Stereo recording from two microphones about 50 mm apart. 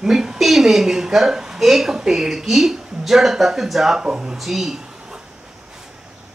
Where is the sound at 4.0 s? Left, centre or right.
Centre.